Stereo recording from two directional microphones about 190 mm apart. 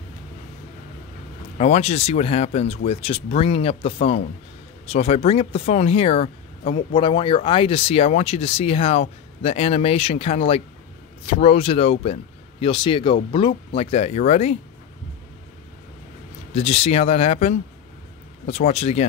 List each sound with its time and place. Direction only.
1.6 s speech: 35° left (ahead or behind)
16.5 s speech: 35° left (ahead or behind)